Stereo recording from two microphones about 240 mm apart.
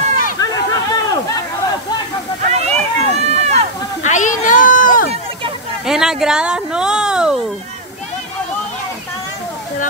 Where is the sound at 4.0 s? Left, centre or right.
Left.